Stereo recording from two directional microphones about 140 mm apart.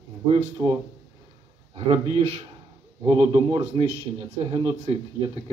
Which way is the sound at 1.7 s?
40° right (ahead or behind).